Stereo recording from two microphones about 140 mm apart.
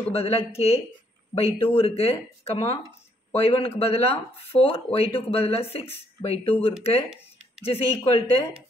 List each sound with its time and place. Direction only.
0.1 s speech: 45° left (ahead or behind)